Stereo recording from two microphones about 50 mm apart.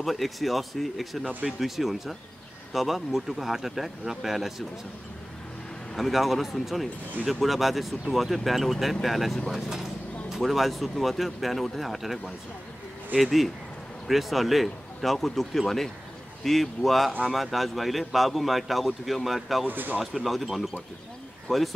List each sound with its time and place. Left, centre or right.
0.0 s speech: centre
5.9 s speech: centre
13.2 s speech: centre
19.7 s speech: right
20.0 s speech: centre